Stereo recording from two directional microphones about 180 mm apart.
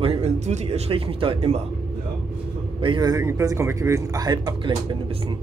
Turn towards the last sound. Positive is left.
turn(degrees=-25)  # may be behind; listen again after turning